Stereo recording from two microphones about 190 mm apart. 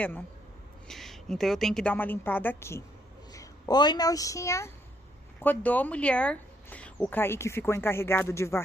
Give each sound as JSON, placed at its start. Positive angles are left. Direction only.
{"t": 0.8, "sound": "a woman's voice", "side_deg": 0}